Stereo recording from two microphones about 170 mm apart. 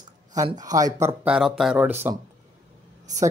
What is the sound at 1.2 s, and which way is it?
Speech, 5° right (ahead or behind).